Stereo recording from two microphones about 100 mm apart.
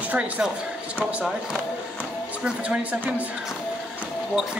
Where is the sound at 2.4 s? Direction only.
15° right (ahead or behind).